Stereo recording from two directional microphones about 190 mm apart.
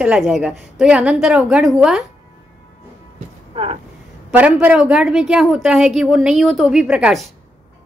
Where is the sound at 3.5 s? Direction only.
30° right (ahead or behind).